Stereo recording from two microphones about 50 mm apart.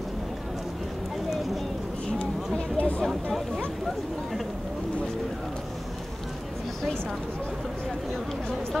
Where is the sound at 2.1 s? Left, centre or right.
Centre.